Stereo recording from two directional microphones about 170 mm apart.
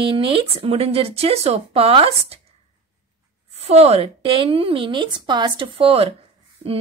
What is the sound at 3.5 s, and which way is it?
A woman's voice, 35° right (ahead or behind).